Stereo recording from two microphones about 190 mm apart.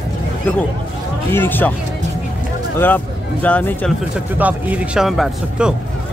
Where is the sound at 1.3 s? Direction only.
10° left (ahead or behind).